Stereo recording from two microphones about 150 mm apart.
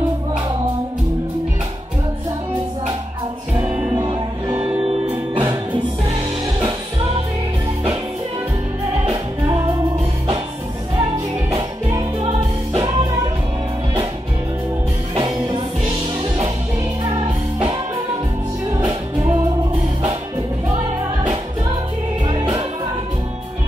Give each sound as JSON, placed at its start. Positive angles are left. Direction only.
{"t": 3.9, "sound": "music", "side_deg": -30}
{"t": 5.3, "sound": "music", "side_deg": -30}
{"t": 9.0, "sound": "music", "side_deg": -35}
{"t": 15.1, "sound": "music", "side_deg": -30}
{"t": 22.2, "sound": "music", "side_deg": -30}